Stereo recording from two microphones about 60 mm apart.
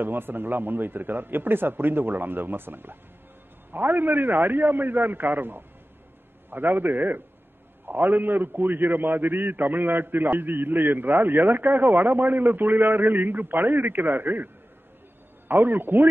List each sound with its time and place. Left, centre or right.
0.0 s a man's voice: right